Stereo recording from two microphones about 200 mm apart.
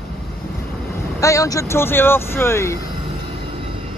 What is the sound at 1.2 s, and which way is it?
Speech, 15° left (ahead or behind).